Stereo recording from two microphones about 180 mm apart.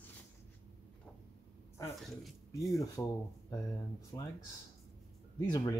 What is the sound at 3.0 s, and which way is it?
Speech, 15° left (ahead or behind).